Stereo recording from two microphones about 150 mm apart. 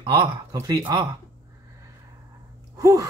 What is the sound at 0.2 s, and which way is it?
Speech, 25° right (ahead or behind).